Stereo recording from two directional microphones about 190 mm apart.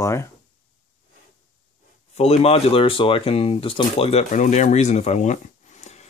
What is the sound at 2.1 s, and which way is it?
Speech, 35° left (ahead or behind).